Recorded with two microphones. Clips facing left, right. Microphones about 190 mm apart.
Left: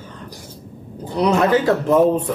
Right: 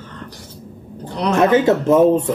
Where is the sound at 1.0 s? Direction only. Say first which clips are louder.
Left 3 dB; 10° left (ahead or behind).